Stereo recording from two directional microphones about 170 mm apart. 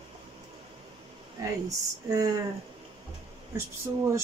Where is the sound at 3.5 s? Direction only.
15° right (ahead or behind).